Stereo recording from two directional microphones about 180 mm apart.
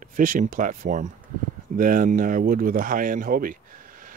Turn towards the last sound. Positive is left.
turn(degrees=-50)  # may be behind; listen again after turning